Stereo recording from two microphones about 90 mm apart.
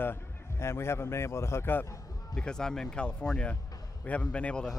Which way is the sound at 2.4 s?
10° left (ahead or behind).